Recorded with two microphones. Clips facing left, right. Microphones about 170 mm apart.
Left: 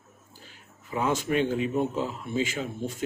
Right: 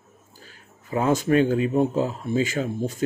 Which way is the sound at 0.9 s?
45° right (ahead or behind).